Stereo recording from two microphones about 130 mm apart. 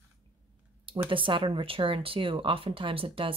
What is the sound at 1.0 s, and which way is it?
Speech, 40° right (ahead or behind).